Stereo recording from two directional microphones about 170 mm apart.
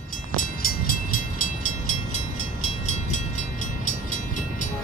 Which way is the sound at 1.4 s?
45° left (ahead or behind).